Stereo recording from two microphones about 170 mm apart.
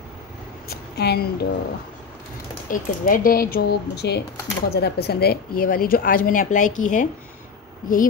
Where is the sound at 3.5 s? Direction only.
75° left (ahead or behind).